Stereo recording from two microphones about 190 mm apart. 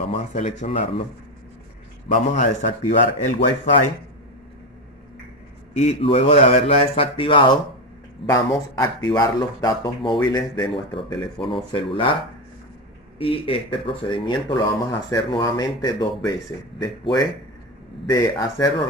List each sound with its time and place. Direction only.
0.1 s speech: 40° left (ahead or behind)
2.0 s speech: 40° left (ahead or behind)
5.8 s speech: 30° left (ahead or behind)
13.2 s speech: 30° left (ahead or behind)